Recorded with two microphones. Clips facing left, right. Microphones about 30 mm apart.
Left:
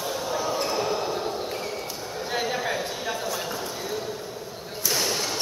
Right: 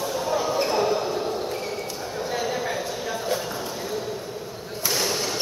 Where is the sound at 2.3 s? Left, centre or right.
Left.